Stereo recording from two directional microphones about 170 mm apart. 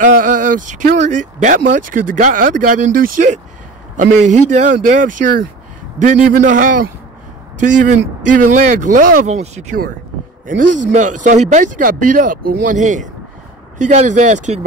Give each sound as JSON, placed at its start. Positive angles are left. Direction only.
{"t": 0.0, "sound": "speech", "side_deg": -50}